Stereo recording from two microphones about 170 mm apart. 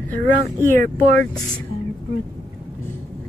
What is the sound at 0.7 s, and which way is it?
Speech, 50° right (ahead or behind).